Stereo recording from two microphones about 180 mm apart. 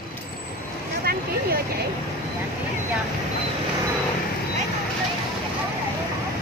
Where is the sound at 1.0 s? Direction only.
55° right (ahead or behind).